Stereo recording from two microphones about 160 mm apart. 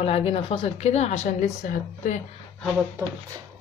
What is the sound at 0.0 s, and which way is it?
A woman's voice, 35° left (ahead or behind).